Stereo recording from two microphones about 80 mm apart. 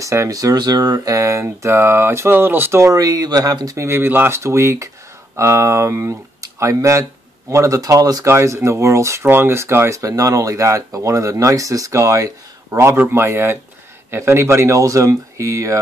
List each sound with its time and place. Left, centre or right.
0.0 s speech: right
3.8 s speech: right
8.3 s speech: right
12.9 s speech: right